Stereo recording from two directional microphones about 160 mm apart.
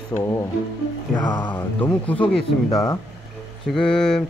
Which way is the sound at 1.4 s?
10° left (ahead or behind).